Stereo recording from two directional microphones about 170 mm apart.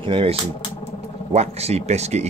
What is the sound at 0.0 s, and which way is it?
Speech, 30° right (ahead or behind).